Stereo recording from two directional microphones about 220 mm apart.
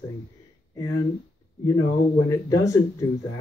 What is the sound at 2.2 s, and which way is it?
Speech, 15° left (ahead or behind).